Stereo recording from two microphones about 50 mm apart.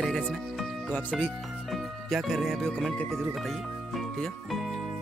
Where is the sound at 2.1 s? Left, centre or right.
Centre.